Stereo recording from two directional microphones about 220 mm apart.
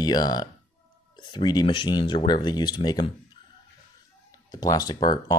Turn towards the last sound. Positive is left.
turn(degrees=20)  # may be behind; listen again after turning